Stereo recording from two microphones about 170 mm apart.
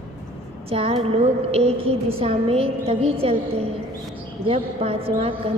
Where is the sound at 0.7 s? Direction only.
35° right (ahead or behind).